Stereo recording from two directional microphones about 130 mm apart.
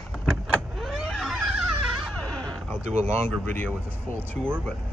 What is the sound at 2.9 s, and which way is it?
Speech, 55° right (ahead or behind).